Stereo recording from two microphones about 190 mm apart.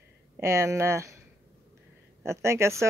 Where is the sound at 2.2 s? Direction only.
15° right (ahead or behind).